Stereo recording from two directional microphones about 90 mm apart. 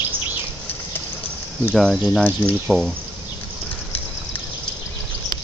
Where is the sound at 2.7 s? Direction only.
5° left (ahead or behind).